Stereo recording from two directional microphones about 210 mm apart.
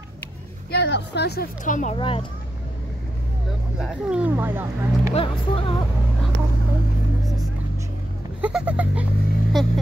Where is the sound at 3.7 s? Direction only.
5° right (ahead or behind).